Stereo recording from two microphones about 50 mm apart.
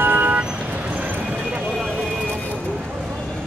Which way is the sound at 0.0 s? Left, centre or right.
Right.